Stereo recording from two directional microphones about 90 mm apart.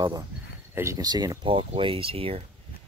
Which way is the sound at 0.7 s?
30° right (ahead or behind).